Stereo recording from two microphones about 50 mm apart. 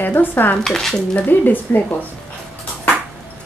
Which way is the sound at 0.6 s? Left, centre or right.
Centre.